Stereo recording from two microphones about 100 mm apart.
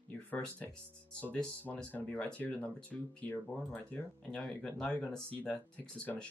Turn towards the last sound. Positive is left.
turn(degrees=15)  # may be behind; listen again after turning